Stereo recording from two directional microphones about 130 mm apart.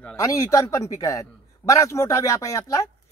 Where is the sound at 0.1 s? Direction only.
25° left (ahead or behind).